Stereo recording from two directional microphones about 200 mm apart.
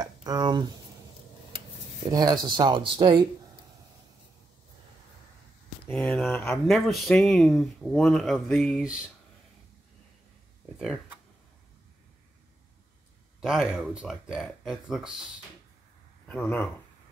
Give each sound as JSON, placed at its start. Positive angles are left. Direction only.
{"t": 0.0, "sound": "speech", "side_deg": -20}
{"t": 2.0, "sound": "speech", "side_deg": -20}
{"t": 5.9, "sound": "speech", "side_deg": 5}
{"t": 13.4, "sound": "speech", "side_deg": 0}
{"t": 16.3, "sound": "speech", "side_deg": 5}